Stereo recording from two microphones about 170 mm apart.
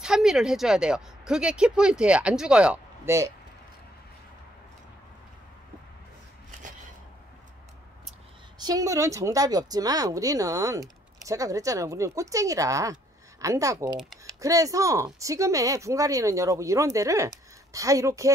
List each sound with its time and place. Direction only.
0.0 s speech: 5° right (ahead or behind)
3.1 s speech: 20° right (ahead or behind)
8.5 s speech: 20° right (ahead or behind)